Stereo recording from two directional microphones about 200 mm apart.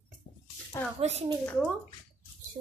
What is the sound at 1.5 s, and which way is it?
Speech, 5° left (ahead or behind).